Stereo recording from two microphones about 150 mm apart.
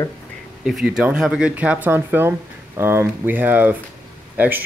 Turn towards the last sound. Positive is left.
turn(degrees=-10)  # may be behind; listen again after turning